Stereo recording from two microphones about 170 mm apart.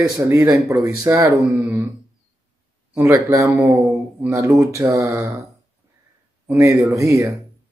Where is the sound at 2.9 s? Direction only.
15° right (ahead or behind).